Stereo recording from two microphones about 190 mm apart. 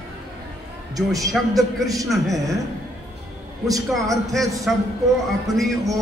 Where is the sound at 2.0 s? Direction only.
Centre (ahead or behind).